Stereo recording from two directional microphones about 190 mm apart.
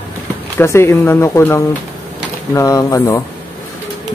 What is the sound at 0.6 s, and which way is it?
Speech, 15° left (ahead or behind).